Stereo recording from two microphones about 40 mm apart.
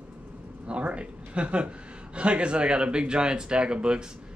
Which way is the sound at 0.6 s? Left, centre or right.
Right.